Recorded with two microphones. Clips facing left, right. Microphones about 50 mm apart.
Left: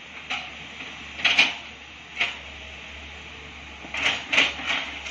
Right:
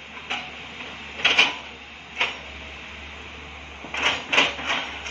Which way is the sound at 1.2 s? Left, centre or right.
Right.